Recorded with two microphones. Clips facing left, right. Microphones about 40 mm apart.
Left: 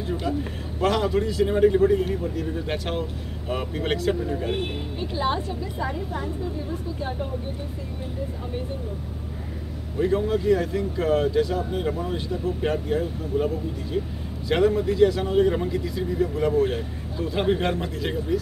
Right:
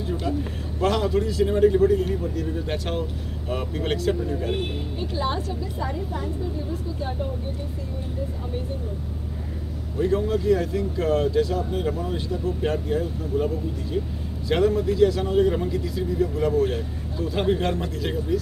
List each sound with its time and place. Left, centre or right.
0.1 s a man's voice: centre
9.9 s a man's voice: centre